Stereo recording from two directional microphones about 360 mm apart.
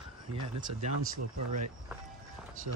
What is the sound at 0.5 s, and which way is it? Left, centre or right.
Speech, centre.